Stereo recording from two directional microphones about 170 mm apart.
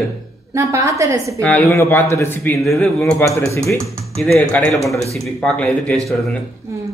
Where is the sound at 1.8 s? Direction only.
15° left (ahead or behind).